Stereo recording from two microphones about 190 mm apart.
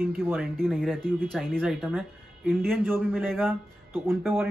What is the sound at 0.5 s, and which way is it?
Speech, centre (ahead or behind).